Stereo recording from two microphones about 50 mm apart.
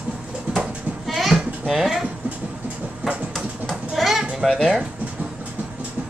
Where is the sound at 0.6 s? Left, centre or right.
Centre.